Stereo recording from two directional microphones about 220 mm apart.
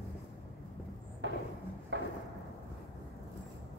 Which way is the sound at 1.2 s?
55° right (ahead or behind).